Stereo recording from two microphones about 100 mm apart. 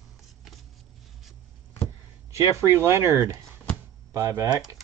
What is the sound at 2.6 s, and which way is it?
Speech, 25° right (ahead or behind).